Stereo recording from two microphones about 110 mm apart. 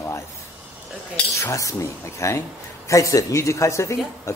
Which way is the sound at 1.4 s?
30° left (ahead or behind).